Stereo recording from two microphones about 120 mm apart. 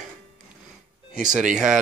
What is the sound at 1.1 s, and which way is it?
Speech, 90° right.